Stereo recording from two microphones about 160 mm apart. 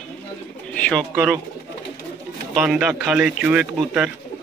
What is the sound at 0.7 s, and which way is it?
Bird, 5° left (ahead or behind).